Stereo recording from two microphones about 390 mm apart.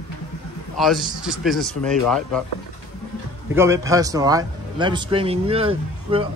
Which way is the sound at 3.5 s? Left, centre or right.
Centre.